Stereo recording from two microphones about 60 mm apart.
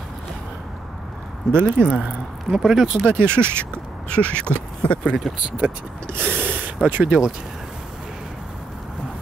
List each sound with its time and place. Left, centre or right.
1.5 s speech: right
2.5 s speech: centre
3.1 s speech: right
3.3 s speech: centre
5.6 s speech: right
6.1 s gasp: right
7.1 s speech: centre